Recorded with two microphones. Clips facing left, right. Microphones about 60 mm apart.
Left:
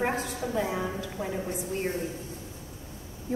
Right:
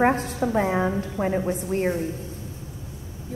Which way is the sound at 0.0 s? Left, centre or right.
Right.